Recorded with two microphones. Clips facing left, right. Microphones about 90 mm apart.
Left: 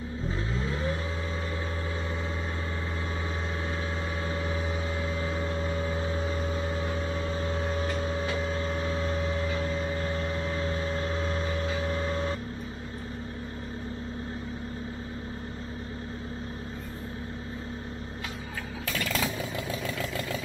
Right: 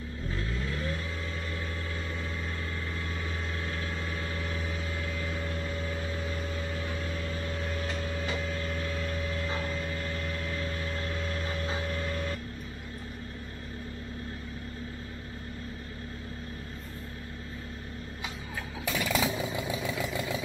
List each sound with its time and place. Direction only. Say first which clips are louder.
0.3 s vehicle: left 2 dB; 25° left (ahead or behind)
4.3 s vehicle: left 4 dB; 20° left (ahead or behind)
18.9 s vehicle: right 2 dB; 15° right (ahead or behind)